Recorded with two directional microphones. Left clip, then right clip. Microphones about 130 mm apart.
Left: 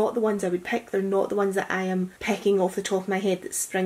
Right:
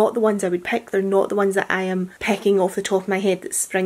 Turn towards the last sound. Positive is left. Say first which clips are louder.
# right 5 dB
turn(degrees=-45)  # may be behind; listen again after turning